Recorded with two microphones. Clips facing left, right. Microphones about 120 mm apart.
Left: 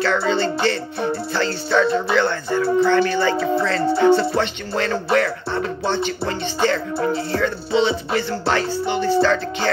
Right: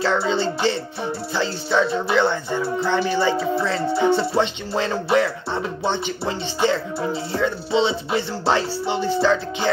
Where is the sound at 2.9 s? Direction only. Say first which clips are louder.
Left 2 dB; 10° right (ahead or behind).